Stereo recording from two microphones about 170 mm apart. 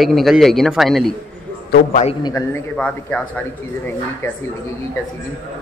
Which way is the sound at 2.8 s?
10° left (ahead or behind).